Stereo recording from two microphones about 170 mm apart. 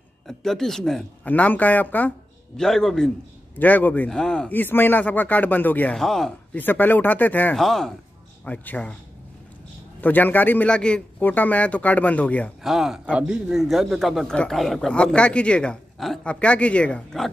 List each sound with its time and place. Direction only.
0.3 s a man's voice: centre (ahead or behind)
10.0 s speech: 10° left (ahead or behind)
12.6 s a man's voice: centre (ahead or behind)